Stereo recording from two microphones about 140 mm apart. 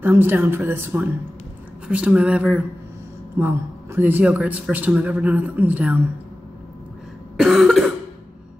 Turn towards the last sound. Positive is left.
turn(degrees=0)  # may be behind; listen again after turning